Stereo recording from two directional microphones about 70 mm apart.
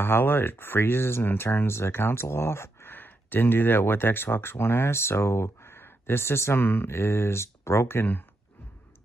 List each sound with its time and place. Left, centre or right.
0.0 s speech: left